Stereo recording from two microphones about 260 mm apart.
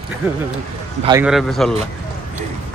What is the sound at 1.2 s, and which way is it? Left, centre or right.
Speech, centre.